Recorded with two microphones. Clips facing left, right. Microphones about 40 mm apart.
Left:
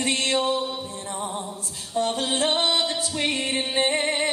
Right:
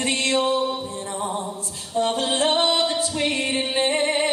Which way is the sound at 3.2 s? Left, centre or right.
Centre.